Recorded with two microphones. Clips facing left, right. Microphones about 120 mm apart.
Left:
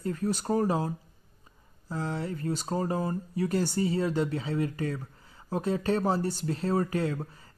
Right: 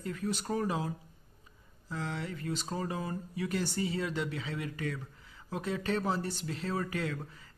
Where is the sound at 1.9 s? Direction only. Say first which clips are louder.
Left 5 dB; 35° left (ahead or behind).